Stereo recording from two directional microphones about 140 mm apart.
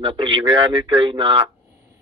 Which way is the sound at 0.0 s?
35° right (ahead or behind).